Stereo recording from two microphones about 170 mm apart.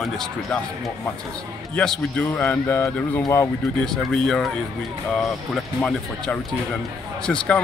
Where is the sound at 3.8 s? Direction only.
5° left (ahead or behind).